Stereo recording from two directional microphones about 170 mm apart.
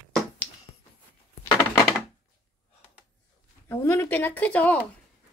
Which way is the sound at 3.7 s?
15° left (ahead or behind).